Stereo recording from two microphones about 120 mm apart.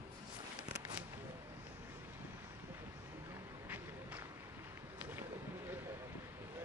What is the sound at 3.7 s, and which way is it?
Run, 15° right (ahead or behind).